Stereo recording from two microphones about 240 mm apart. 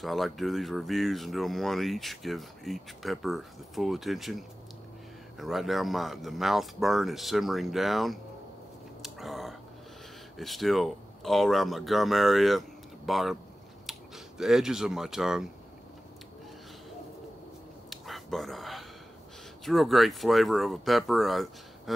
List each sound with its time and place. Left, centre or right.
0.0 s speech: centre
9.0 s a sound: centre
10.3 s speech: centre
17.8 s whispering: centre
19.6 s speech: centre